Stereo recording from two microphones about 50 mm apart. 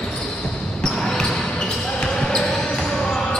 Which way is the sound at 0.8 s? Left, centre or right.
Centre.